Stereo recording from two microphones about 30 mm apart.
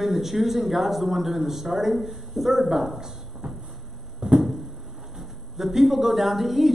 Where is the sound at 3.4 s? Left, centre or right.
Right.